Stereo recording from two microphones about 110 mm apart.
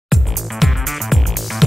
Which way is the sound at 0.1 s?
Centre (ahead or behind).